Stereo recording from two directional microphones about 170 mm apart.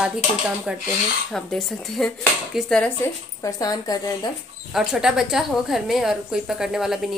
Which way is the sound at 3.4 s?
20° left (ahead or behind).